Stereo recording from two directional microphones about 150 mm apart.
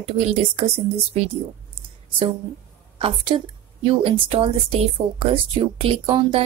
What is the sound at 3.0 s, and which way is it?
Speech, 35° right (ahead or behind).